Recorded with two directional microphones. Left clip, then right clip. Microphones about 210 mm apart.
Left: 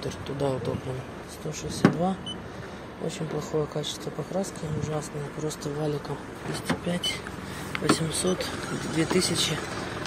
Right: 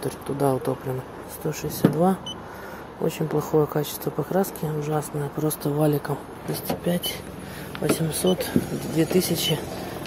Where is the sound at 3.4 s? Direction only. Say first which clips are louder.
Right 7 dB; 35° right (ahead or behind).